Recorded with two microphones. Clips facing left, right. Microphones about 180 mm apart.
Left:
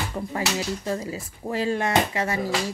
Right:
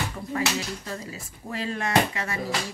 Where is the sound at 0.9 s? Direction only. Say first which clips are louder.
Left 7 dB; 25° left (ahead or behind).